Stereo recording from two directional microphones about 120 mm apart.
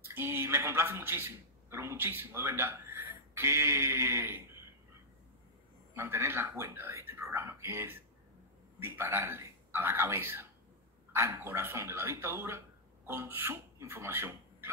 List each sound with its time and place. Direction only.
0.0 s a man's voice: 20° right (ahead or behind)
5.9 s speech: 20° right (ahead or behind)